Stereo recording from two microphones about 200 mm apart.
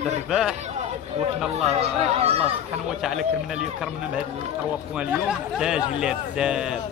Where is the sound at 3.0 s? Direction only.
Centre (ahead or behind).